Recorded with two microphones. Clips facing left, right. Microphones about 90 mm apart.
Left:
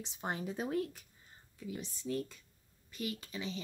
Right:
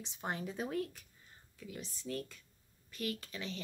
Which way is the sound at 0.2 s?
15° left (ahead or behind).